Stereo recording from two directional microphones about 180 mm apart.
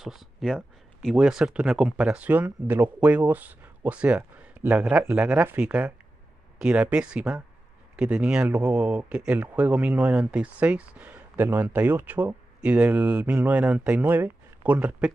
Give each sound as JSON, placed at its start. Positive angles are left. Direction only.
{"t": 0.0, "sound": "speech", "side_deg": 0}